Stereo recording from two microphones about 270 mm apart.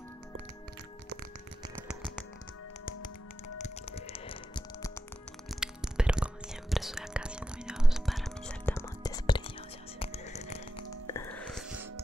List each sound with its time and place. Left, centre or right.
1.8 s finger snapping: centre
3.5 s music: left
5.5 s whispering: centre
9.9 s music: left; by 11.6 s centre